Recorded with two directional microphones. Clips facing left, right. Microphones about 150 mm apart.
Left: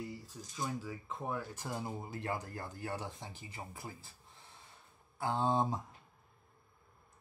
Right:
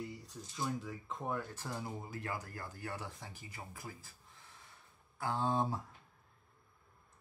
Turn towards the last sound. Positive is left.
turn(degrees=20)  # may be behind; listen again after turning